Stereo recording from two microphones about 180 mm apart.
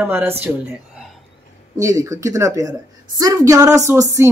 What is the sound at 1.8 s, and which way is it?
A woman's voice, 15° right (ahead or behind).